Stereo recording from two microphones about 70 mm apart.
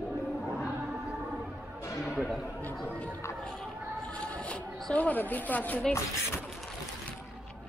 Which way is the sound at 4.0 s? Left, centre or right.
Centre.